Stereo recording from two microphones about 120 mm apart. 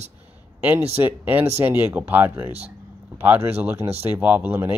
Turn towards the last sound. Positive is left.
turn(degrees=-15)  # may be behind; listen again after turning